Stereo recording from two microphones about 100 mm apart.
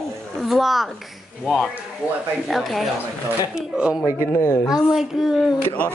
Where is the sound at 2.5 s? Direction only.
Centre (ahead or behind).